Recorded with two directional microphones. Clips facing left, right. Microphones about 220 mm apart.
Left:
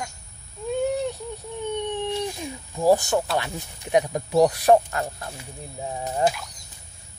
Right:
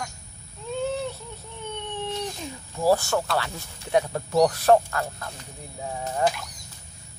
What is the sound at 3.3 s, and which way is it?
Speech, 15° left (ahead or behind).